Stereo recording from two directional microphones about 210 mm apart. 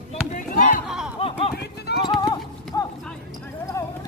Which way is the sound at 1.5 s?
50° left (ahead or behind).